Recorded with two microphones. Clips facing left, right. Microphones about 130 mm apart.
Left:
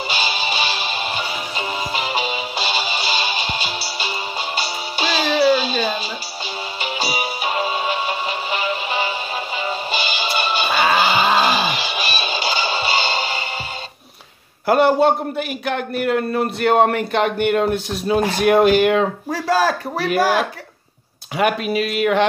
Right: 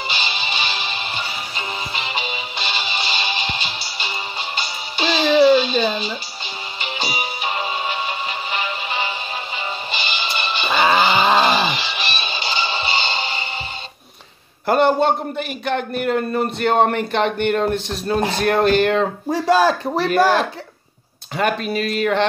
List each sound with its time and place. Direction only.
0.1 s music: 45° left (ahead or behind)
10.8 s a sound: 40° right (ahead or behind)
11.5 s music: 45° left (ahead or behind)
14.7 s a man's voice: 5° left (ahead or behind)
19.3 s speech: 20° right (ahead or behind)
20.0 s speech: 5° left (ahead or behind)